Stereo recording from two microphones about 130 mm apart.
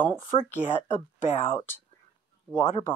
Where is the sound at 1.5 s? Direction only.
15° left (ahead or behind).